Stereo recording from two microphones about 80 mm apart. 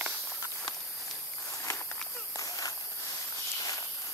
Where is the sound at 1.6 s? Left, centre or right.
Left.